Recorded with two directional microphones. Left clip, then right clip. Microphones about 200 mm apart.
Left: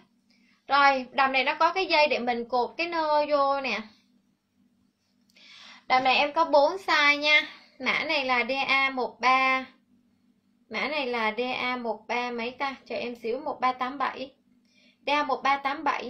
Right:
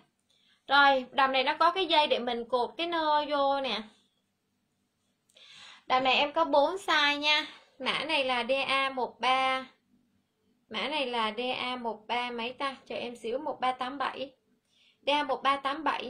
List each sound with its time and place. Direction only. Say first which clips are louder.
0.7 s a woman's voice: left 1 dB; 25° right (ahead or behind)
5.6 s a woman's voice: left 4 dB; 20° right (ahead or behind)
10.7 s a woman's voice: left 3 dB; 15° right (ahead or behind)